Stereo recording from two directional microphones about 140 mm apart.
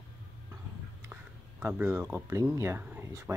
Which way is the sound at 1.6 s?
15° right (ahead or behind).